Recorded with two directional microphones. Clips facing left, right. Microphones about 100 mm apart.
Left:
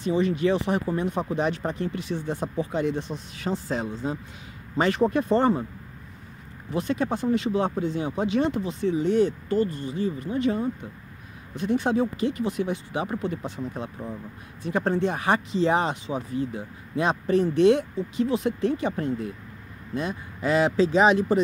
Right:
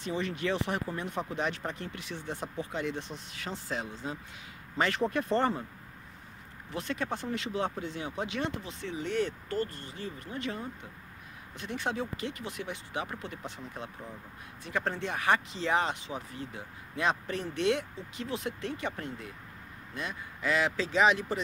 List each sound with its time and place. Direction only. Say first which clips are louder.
0.0 s speech: left 10 dB; 20° left (ahead or behind)
6.7 s speech: left 8 dB; 20° left (ahead or behind)
11.8 s speech: left 6 dB; 25° left (ahead or behind)